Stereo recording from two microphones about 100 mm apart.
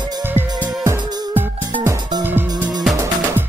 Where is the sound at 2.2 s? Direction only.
20° right (ahead or behind).